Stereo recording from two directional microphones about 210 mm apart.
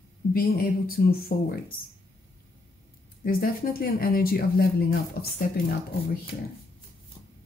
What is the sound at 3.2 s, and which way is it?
A woman's voice, 45° left (ahead or behind).